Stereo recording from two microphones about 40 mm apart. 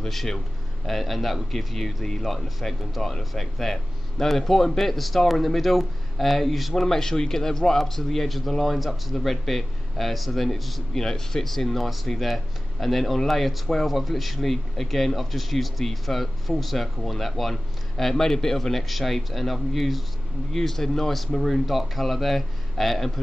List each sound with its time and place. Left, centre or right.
0.1 s speech: centre
6.7 s speech: centre